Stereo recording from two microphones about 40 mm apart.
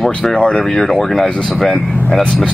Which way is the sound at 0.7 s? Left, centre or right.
Centre.